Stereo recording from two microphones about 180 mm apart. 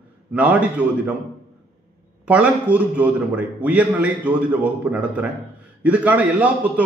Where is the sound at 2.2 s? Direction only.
5° right (ahead or behind).